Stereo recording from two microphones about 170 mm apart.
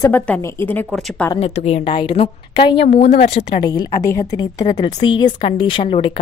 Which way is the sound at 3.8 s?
20° left (ahead or behind).